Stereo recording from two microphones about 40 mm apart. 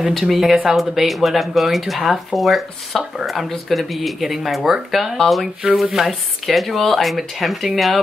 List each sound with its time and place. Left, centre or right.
0.0 s speech: centre